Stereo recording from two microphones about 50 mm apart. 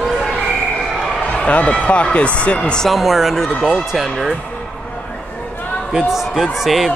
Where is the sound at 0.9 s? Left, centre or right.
Centre.